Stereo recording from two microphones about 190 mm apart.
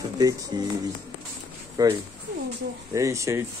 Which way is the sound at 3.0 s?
15° right (ahead or behind).